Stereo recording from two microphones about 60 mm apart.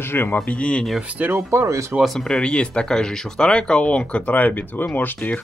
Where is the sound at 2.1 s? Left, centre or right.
Centre; by 5.1 s left.